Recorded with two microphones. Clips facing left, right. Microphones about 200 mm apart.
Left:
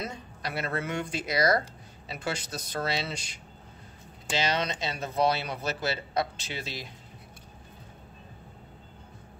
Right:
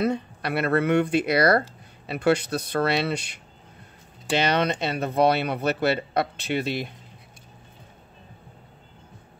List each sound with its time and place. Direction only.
0.0 s speech: 60° right (ahead or behind)